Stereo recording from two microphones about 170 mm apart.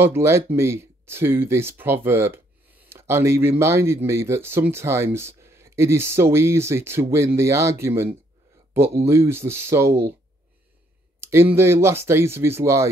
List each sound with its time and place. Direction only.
0.0 s speech: 15° right (ahead or behind)
11.1 s a sound: 15° right (ahead or behind)
11.5 s speech: 15° right (ahead or behind)